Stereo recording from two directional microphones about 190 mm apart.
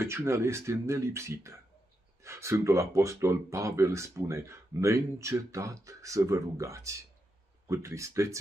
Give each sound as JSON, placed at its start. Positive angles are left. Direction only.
{"t": 0.0, "sound": "speech", "side_deg": -15}